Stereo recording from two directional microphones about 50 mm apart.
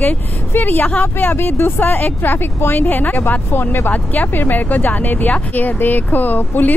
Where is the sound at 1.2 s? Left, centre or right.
Left.